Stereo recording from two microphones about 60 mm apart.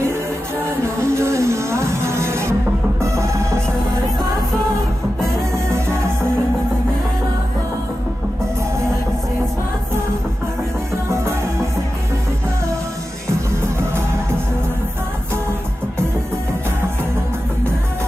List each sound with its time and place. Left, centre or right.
1.0 s music: right